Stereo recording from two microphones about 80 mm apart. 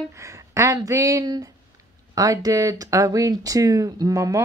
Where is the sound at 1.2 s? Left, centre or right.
Right.